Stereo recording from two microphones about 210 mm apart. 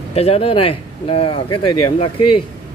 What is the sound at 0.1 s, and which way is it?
Speech, 30° left (ahead or behind).